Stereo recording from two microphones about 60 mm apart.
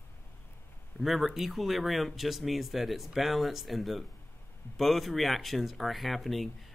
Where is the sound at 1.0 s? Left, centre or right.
Centre.